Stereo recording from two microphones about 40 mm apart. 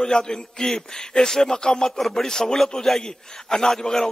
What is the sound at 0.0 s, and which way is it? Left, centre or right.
A man's voice, centre.